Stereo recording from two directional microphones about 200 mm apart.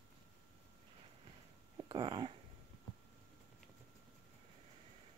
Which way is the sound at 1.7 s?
20° right (ahead or behind).